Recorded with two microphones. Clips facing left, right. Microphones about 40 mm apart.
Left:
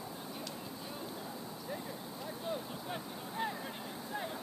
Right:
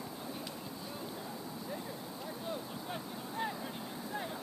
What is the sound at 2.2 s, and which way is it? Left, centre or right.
Vehicle, centre.